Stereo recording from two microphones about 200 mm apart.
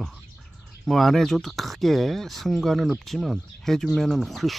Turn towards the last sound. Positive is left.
turn(degrees=0)  # may be behind; listen again after turning